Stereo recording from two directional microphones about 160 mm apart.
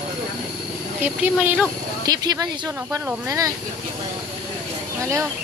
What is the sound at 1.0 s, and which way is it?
Speech, 10° right (ahead or behind).